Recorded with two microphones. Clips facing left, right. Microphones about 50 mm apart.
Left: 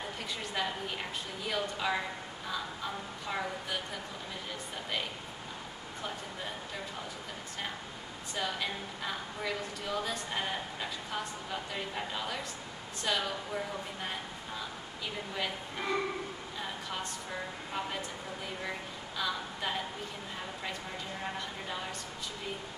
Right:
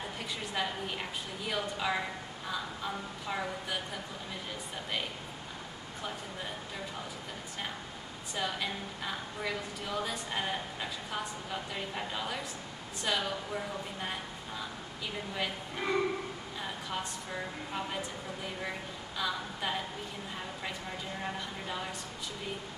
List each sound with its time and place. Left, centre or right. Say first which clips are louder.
0.6 s a woman's voice: even; centre
8.4 s a woman's voice: even; centre
15.3 s a woman's voice: even; centre
18.6 s a woman's voice: even; centre
21.2 s a woman's voice: even; centre